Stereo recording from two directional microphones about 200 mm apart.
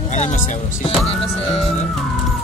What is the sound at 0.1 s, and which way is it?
Music, 35° left (ahead or behind).